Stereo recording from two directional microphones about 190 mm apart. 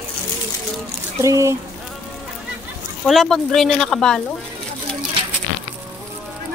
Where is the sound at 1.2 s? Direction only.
15° right (ahead or behind).